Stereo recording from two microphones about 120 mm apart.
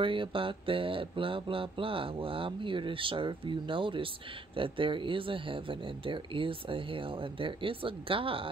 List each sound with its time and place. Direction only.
0.0 s speech: 45° right (ahead or behind)